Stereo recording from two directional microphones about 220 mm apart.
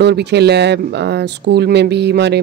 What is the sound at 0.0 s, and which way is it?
A man's voice, 50° right (ahead or behind).